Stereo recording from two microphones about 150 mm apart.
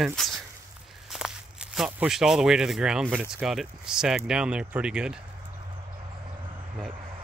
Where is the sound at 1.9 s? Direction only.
5° right (ahead or behind).